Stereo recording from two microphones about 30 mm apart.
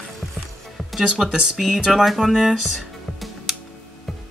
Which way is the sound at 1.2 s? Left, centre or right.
Centre.